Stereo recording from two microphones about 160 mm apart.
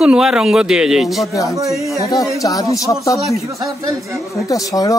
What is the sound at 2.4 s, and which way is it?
Speech, 20° left (ahead or behind).